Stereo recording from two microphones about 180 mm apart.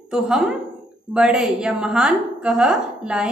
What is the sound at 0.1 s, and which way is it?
A woman's voice, centre (ahead or behind).